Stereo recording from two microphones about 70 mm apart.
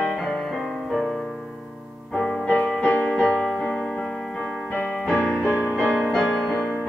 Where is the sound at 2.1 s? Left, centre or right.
Centre.